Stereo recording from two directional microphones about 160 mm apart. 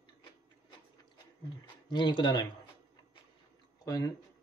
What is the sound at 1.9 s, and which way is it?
Speech, 30° left (ahead or behind).